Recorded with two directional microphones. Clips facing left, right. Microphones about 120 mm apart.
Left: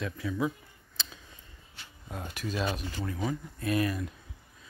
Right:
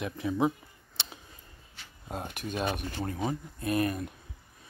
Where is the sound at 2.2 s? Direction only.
50° right (ahead or behind).